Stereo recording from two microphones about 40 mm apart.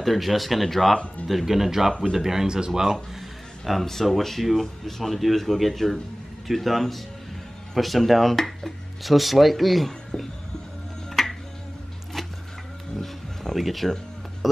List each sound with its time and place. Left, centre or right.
0.0 s speech: centre
3.2 s a sound: centre
3.8 s speech: centre
10.1 s music: left
11.1 s music: centre
12.9 s music: centre